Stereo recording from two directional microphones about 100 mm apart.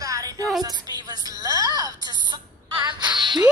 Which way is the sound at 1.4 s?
40° right (ahead or behind).